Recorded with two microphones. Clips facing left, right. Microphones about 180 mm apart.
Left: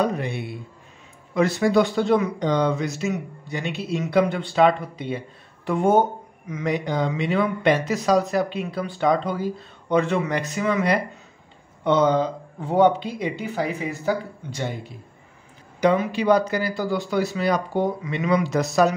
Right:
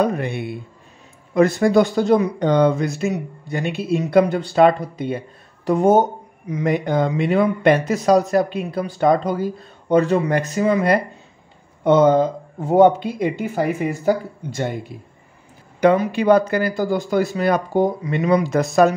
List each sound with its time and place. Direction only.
0.0 s speech: 55° right (ahead or behind); by 6.0 s 40° right (ahead or behind)
6.6 s speech: 50° right (ahead or behind)
16.1 s speech: 55° right (ahead or behind)
18.5 s speech: 50° right (ahead or behind)